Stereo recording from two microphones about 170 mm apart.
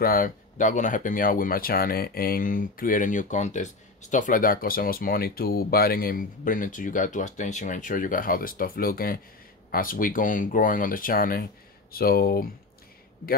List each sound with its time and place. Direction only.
0.0 s speech: 55° left (ahead or behind)